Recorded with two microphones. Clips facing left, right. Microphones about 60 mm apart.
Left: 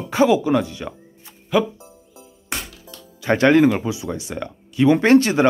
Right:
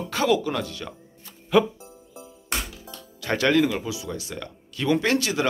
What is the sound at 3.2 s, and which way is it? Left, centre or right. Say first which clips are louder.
Speech: left 7 dB; left.